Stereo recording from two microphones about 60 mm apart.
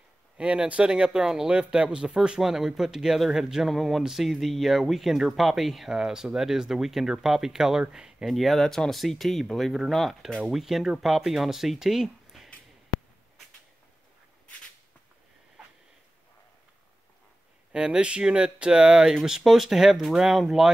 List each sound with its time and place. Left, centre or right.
0.4 s speech: centre
17.7 s speech: centre